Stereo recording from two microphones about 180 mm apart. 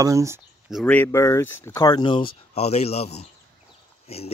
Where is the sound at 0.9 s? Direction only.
10° left (ahead or behind).